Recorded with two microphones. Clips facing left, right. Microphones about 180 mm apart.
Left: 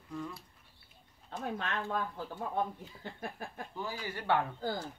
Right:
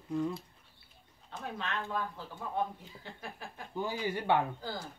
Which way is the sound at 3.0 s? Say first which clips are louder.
Left 4 dB; 50° left (ahead or behind).